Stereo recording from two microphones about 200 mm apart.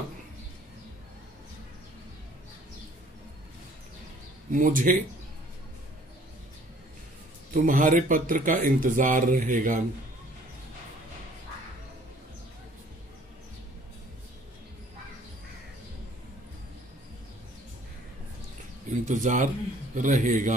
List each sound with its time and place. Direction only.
4.5 s speech: 40° right (ahead or behind)
7.5 s speech: 40° right (ahead or behind)
19.0 s speech: 40° right (ahead or behind)